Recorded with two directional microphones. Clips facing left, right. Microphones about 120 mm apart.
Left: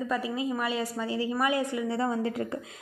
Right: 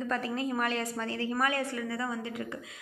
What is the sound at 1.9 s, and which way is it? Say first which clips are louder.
Speech: left 6 dB; 35° left (ahead or behind).